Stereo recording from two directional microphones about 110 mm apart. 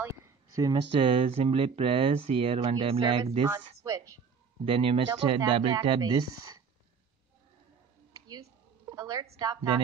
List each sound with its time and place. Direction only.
0.0 s a sound: 25° right (ahead or behind)
0.7 s speech: 60° right (ahead or behind)
3.4 s speech: 30° right (ahead or behind)
4.6 s speech: 55° right (ahead or behind); by 6.6 s 40° right (ahead or behind)
8.1 s a sound: 30° right (ahead or behind)
9.4 s speech: 40° right (ahead or behind)